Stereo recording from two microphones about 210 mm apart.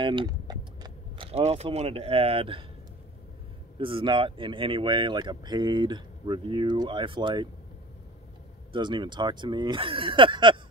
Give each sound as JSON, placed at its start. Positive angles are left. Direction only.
{"t": 0.0, "sound": "speech", "side_deg": -25}
{"t": 3.7, "sound": "speech", "side_deg": -25}
{"t": 8.7, "sound": "speech", "side_deg": -20}